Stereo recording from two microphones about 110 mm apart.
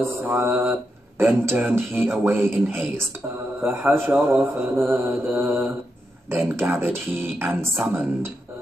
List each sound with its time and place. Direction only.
0.0 s speech: 20° right (ahead or behind)